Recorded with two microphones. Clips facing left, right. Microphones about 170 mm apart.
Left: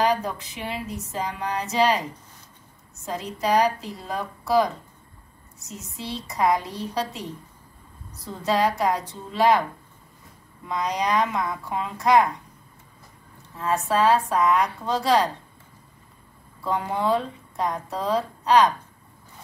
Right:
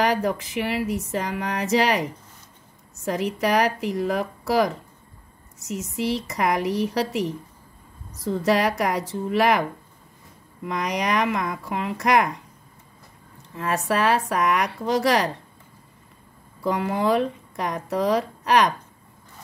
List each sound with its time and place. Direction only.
0.0 s speech: 90° right
3.1 s speech: 90° right
10.7 s speech: 80° right
13.6 s speech: 90° right
16.6 s speech: 75° right (ahead or behind)